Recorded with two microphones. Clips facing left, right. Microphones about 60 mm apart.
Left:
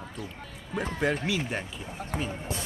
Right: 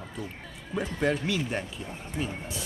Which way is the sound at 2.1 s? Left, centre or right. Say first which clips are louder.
Even; left.